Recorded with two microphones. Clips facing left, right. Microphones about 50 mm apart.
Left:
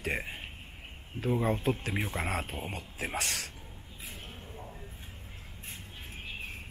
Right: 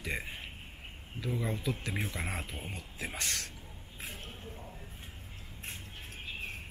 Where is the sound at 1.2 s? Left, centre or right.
Left.